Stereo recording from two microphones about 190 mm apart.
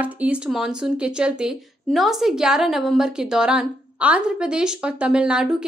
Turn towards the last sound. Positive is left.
turn(degrees=-5)  # may be behind; listen again after turning